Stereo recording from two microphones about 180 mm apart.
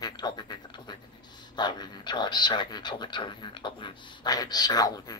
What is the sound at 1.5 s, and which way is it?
Speech, 25° left (ahead or behind).